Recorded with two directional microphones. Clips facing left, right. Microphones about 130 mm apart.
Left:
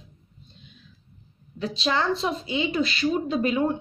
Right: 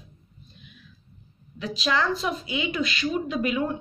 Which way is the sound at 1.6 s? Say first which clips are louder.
Even; 30° left (ahead or behind).